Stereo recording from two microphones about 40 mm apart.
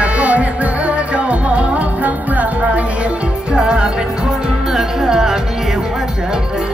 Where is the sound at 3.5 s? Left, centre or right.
Right.